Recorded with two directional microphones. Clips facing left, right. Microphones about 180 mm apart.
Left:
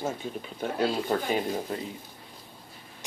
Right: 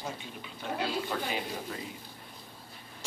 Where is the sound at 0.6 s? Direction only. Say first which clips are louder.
Left 5 dB; 45° left (ahead or behind).